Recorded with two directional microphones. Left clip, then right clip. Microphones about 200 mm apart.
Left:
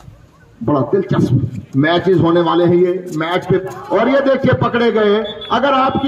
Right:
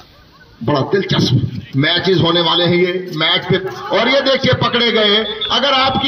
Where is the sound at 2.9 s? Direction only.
40° left (ahead or behind).